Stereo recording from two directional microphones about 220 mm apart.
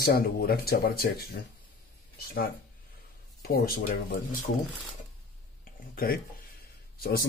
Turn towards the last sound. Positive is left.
turn(degrees=45)  # may be behind; listen again after turning